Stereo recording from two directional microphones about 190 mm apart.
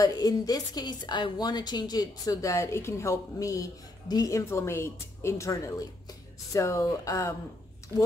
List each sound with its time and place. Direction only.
0.0 s a woman's voice: 20° left (ahead or behind)